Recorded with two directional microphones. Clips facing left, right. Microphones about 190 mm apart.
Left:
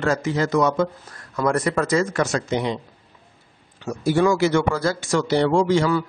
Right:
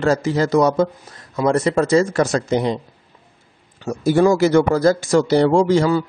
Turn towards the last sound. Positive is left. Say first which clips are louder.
# right 3 dB
turn(degrees=-35)  # may be behind; listen again after turning